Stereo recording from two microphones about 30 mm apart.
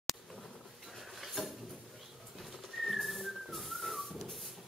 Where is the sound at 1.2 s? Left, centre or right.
Centre.